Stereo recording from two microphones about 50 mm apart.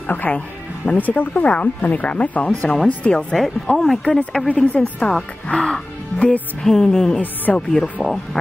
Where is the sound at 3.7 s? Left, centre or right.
Centre.